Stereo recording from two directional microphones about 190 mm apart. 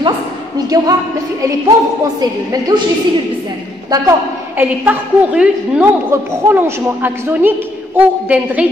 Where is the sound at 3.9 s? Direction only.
15° right (ahead or behind).